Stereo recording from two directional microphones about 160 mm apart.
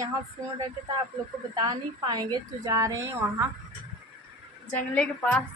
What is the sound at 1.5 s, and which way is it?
A woman's voice, 25° right (ahead or behind).